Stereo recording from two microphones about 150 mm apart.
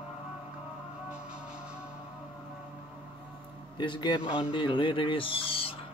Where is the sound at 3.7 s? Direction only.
30° left (ahead or behind).